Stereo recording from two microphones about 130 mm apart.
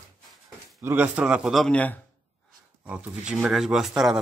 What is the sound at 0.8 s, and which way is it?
Speech, 10° right (ahead or behind).